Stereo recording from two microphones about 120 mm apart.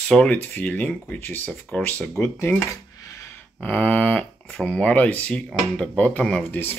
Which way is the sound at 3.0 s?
25° left (ahead or behind).